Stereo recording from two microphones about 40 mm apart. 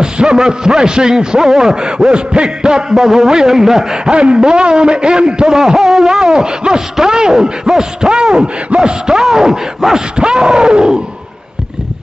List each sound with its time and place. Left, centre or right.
0.0 s a man's voice: centre
10.1 s a man's voice: right